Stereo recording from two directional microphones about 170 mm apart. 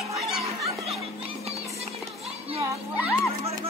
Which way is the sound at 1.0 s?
35° right (ahead or behind).